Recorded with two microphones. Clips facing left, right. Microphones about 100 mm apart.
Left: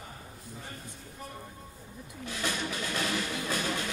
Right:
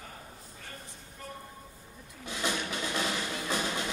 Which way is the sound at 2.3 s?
20° right (ahead or behind).